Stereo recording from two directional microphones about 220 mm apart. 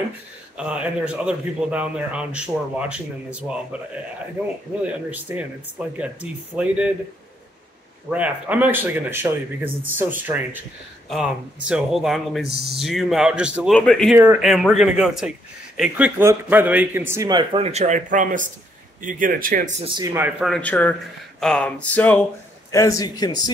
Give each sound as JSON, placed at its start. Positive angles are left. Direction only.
{"t": 0.6, "sound": "a man's voice", "side_deg": -5}
{"t": 5.1, "sound": "a man's voice", "side_deg": -5}
{"t": 8.1, "sound": "a man's voice", "side_deg": -5}
{"t": 14.1, "sound": "a man's voice", "side_deg": -5}
{"t": 20.2, "sound": "a man's voice", "side_deg": -5}